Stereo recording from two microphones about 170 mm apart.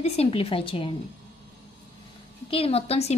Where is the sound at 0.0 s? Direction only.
35° left (ahead or behind).